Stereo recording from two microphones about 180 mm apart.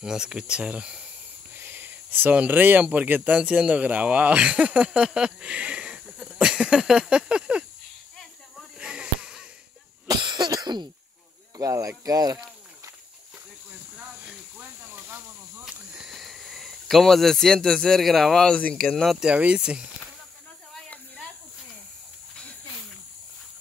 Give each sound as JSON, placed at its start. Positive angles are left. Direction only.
{"t": 0.0, "sound": "speech", "side_deg": -5}
{"t": 8.5, "sound": "a sound", "side_deg": -5}
{"t": 10.0, "sound": "cough", "side_deg": -25}
{"t": 11.5, "sound": "speech", "side_deg": -20}
{"t": 14.9, "sound": "snake", "side_deg": -10}
{"t": 15.6, "sound": "speech", "side_deg": -5}